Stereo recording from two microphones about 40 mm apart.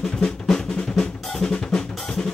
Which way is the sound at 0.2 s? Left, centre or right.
Centre.